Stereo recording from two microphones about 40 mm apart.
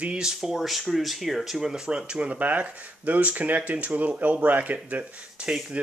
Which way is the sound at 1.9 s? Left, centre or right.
Right.